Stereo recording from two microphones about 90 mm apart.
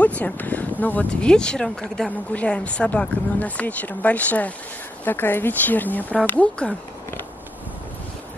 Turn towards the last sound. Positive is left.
turn(degrees=15)  # may be behind; listen again after turning